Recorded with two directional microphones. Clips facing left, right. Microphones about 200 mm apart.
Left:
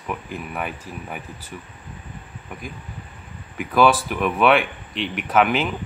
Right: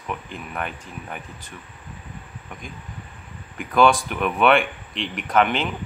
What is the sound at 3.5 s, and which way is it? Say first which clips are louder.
Speech: even; 5° left (ahead or behind).